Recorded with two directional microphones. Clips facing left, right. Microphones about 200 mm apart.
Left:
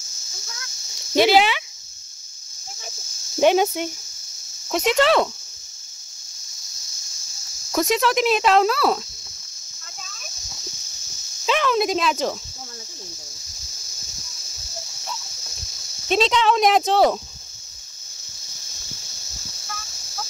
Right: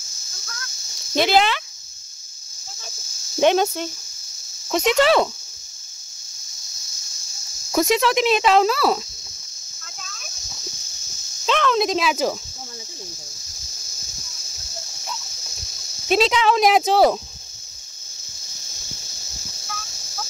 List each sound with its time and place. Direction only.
1.1 s speech: 10° left (ahead or behind)
3.3 s speech: 5° left (ahead or behind)
7.7 s speech: 5° right (ahead or behind)
10.0 s a sound: centre (ahead or behind)
11.4 s a sound: 5° left (ahead or behind)
12.0 s speech: 5° right (ahead or behind)
16.1 s speech: 5° right (ahead or behind)